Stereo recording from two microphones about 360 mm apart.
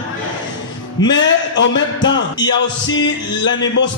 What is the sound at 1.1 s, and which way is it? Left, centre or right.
Speech, left.